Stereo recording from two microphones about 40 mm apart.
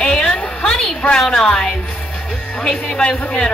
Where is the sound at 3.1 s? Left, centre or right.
Centre.